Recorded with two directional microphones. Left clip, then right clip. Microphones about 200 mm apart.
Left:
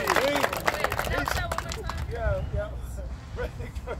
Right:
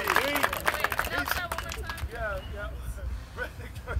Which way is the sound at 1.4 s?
35° left (ahead or behind).